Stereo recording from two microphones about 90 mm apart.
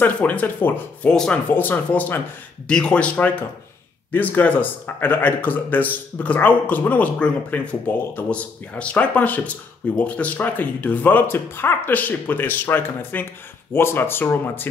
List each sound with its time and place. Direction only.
0.0 s speech: 15° left (ahead or behind)
1.1 s speech: 10° left (ahead or behind)
1.5 s speech: 20° left (ahead or behind)